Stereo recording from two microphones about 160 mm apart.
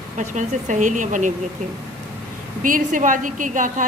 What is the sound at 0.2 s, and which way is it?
Speech, 50° right (ahead or behind).